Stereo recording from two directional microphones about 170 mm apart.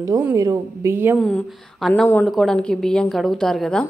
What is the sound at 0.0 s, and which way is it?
A woman's voice, 20° right (ahead or behind).